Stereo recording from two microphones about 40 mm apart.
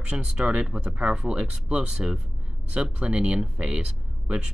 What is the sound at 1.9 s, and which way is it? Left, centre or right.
Speech, centre.